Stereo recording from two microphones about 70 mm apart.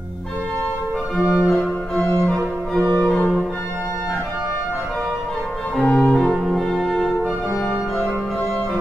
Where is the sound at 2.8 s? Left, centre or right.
Left.